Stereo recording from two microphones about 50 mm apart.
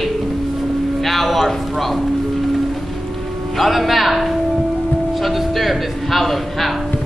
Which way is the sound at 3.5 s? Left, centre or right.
Centre.